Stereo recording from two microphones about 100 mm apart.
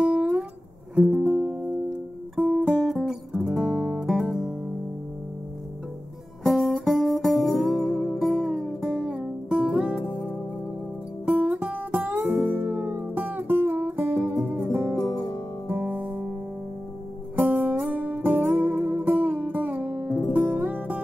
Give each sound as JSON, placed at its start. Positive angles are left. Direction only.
{"t": 0.0, "sound": "music", "side_deg": -10}
{"t": 6.4, "sound": "music", "side_deg": 0}
{"t": 11.2, "sound": "music", "side_deg": -15}
{"t": 15.9, "sound": "music", "side_deg": -15}
{"t": 17.4, "sound": "music", "side_deg": -15}
{"t": 20.1, "sound": "music", "side_deg": 40}
{"t": 20.3, "sound": "music", "side_deg": -20}